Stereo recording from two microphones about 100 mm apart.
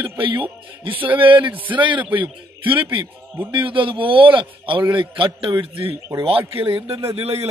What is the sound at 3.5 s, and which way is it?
A man's voice, 60° right (ahead or behind).